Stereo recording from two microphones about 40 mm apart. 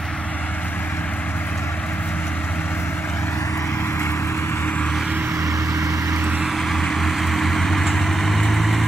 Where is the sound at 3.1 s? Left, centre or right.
Left.